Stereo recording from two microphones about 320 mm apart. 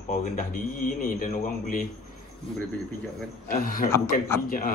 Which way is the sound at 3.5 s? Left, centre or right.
Left.